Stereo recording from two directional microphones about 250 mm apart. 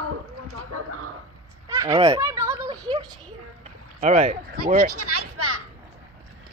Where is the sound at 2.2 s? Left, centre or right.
Centre.